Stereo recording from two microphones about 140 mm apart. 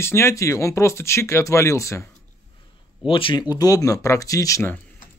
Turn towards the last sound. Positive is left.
turn(degrees=25)  # may be behind; listen again after turning